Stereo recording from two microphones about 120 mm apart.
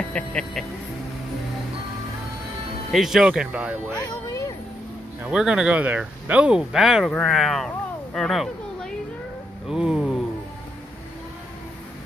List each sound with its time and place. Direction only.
0.1 s speech: 10° left (ahead or behind)
2.9 s speech: centre (ahead or behind)
3.9 s music: 25° left (ahead or behind)
5.2 s speech: 10° right (ahead or behind)